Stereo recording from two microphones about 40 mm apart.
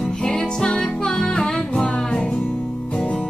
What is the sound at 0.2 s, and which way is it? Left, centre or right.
Music, centre.